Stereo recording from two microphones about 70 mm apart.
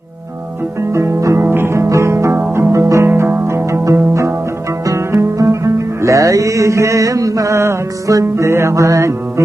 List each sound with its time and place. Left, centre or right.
0.9 s music: right
1.4 s music: right
3.1 s music: right